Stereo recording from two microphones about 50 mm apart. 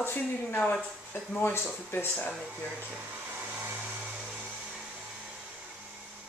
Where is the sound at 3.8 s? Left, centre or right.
Right.